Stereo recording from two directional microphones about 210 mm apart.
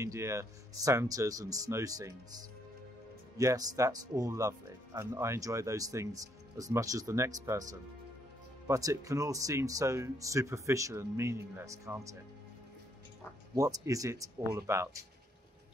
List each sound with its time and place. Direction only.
0.0 s speech: 15° right (ahead or behind)
3.3 s speech: 15° right (ahead or behind)
8.6 s speech: 15° right (ahead or behind)
13.6 s speech: 15° right (ahead or behind)